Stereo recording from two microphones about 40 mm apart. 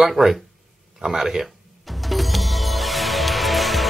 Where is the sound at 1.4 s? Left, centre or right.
Centre.